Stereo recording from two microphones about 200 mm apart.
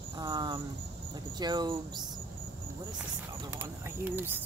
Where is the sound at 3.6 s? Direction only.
10° right (ahead or behind).